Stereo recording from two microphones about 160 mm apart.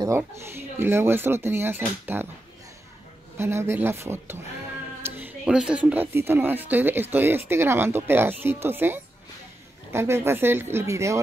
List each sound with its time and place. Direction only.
0.0 s speech: 15° right (ahead or behind)
3.3 s speech: 15° right (ahead or behind)